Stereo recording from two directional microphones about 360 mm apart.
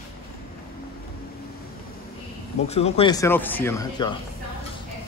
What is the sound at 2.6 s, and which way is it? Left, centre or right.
A man's voice, centre.